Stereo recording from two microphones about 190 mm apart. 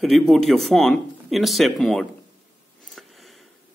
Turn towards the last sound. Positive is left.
turn(degrees=0)  # may be behind; listen again after turning